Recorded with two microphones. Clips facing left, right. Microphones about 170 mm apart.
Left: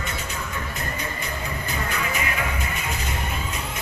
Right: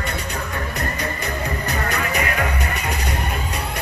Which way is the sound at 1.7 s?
70° right (ahead or behind).